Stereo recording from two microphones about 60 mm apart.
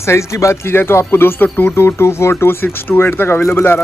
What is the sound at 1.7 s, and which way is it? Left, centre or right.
Speech, left.